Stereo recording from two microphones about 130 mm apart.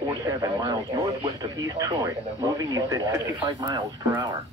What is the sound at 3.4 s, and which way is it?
Speech, 35° right (ahead or behind).